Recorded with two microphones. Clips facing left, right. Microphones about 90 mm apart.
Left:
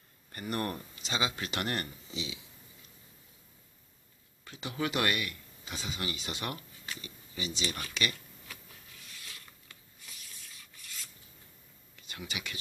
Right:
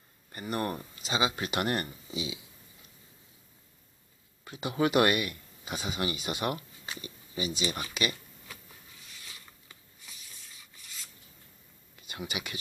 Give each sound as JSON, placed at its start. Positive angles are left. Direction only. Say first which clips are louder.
{"t": 0.3, "sound": "speech", "louder": "right 2 dB", "side_deg": -5}
{"t": 4.5, "sound": "speech", "louder": "right 6 dB", "side_deg": -15}
{"t": 9.2, "sound": "rub", "louder": "even", "side_deg": -5}
{"t": 12.1, "sound": "speech", "louder": "right 4 dB", "side_deg": -15}